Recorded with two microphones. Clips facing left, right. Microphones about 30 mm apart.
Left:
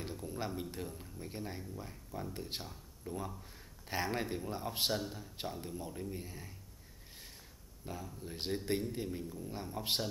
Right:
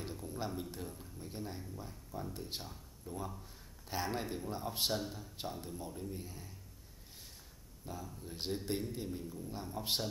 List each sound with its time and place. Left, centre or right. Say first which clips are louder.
0.0 s a sound: left 1 dB; centre
0.6 s a man's voice: left 2 dB; centre
7.8 s a man's voice: left 1 dB; centre